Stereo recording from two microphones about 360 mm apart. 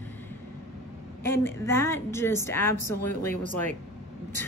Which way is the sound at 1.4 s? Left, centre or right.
Centre.